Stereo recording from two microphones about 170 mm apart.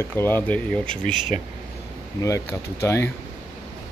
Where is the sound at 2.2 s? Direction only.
15° left (ahead or behind).